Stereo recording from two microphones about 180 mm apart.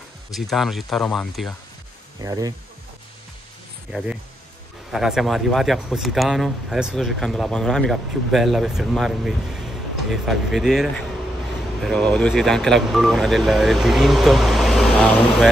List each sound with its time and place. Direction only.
0.3 s speech: centre (ahead or behind)
2.2 s speech: 20° right (ahead or behind)
3.9 s speech: 10° right (ahead or behind)